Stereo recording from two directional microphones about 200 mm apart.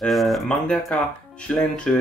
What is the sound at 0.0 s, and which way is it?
Speech, centre (ahead or behind).